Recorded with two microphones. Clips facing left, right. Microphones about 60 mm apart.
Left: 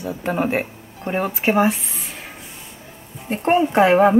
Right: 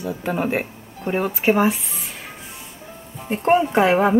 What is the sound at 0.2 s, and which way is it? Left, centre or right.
Speech, centre.